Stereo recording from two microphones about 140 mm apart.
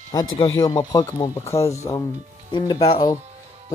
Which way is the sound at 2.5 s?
35° left (ahead or behind).